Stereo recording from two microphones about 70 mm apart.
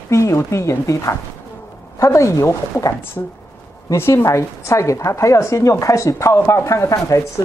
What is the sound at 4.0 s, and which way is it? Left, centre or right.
A woman's voice, left.